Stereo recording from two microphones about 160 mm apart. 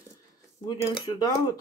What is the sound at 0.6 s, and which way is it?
Speech, 30° left (ahead or behind).